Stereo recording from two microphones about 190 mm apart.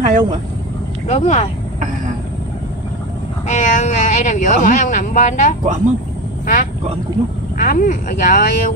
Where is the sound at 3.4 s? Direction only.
40° left (ahead or behind).